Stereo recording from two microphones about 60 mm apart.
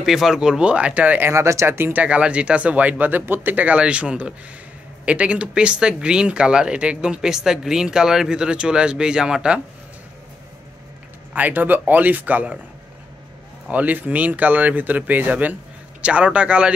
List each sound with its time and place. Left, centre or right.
0.0 s speech: centre; by 1.3 s right
1.3 s speech: right
2.0 s speech: right
11.3 s speech: right
13.7 s speech: right